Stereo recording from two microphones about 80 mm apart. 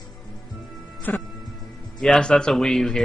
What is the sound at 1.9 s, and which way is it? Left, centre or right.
Speech, centre.